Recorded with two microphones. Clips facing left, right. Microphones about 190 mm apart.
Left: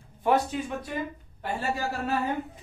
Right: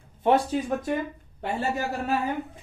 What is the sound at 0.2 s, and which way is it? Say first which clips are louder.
Speech: right 3 dB; 30° right (ahead or behind).